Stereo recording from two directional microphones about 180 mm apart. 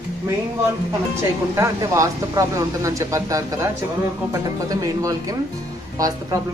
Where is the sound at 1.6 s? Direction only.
15° right (ahead or behind).